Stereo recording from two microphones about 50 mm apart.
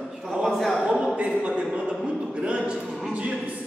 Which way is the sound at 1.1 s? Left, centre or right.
Right.